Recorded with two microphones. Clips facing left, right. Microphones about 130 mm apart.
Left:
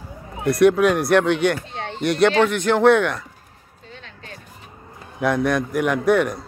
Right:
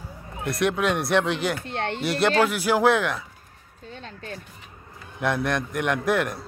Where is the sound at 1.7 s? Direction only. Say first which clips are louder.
Right 3 dB; 65° right (ahead or behind).